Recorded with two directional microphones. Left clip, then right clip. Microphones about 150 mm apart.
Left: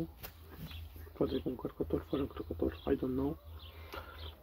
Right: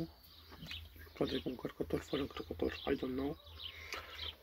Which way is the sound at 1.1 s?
Centre (ahead or behind).